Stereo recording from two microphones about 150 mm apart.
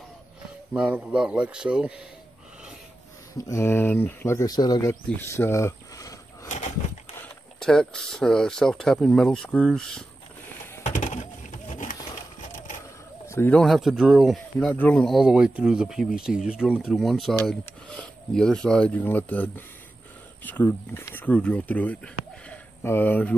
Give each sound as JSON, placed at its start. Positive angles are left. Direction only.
{"t": 0.7, "sound": "speech", "side_deg": -10}
{"t": 3.3, "sound": "speech", "side_deg": 20}
{"t": 5.1, "sound": "a sound", "side_deg": 15}
{"t": 7.5, "sound": "speech", "side_deg": 5}
{"t": 10.9, "sound": "a sound", "side_deg": 60}
{"t": 13.3, "sound": "speech", "side_deg": 15}
{"t": 13.6, "sound": "speech", "side_deg": 0}
{"t": 14.7, "sound": "speech", "side_deg": 10}